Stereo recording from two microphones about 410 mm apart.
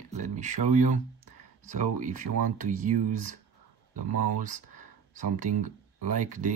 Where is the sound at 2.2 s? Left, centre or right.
Right.